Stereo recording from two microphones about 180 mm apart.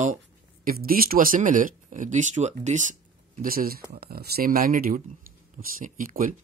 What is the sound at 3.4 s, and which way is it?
Speech, 55° right (ahead or behind).